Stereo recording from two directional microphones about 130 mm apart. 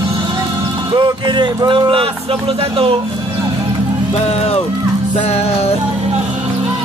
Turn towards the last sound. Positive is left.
turn(degrees=50)  # may be behind; listen again after turning